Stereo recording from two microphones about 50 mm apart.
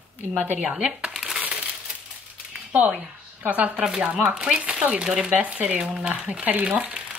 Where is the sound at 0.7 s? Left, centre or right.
Right.